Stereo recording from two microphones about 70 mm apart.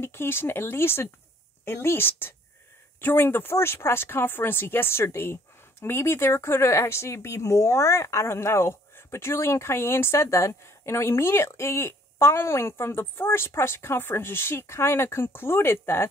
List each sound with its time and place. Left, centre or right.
0.0 s speech: left